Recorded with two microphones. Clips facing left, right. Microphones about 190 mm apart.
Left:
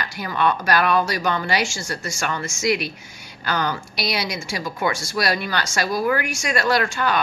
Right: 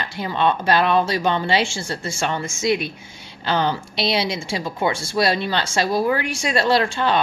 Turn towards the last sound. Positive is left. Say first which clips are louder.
# right 2 dB
turn(degrees=-30)  # may be behind; listen again after turning